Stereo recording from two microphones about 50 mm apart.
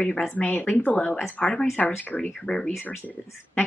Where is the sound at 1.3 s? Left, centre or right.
Left.